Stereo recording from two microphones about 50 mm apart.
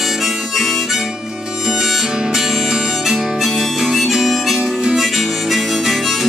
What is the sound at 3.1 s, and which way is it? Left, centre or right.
Harmonica, centre.